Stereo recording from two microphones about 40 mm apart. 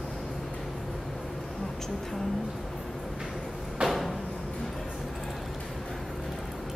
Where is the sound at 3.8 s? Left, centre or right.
Centre.